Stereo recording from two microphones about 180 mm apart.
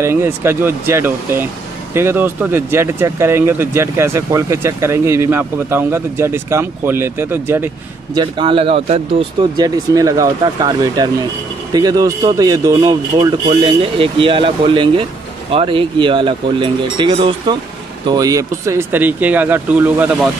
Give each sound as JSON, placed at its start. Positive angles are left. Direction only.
{"t": 0.0, "sound": "speech", "side_deg": -15}
{"t": 8.2, "sound": "speech", "side_deg": -30}
{"t": 9.6, "sound": "speech", "side_deg": -20}